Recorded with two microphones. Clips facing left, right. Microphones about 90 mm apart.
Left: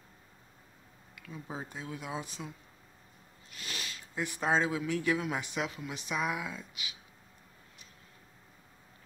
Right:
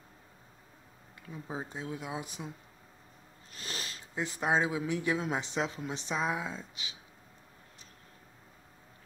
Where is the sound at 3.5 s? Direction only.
35° right (ahead or behind).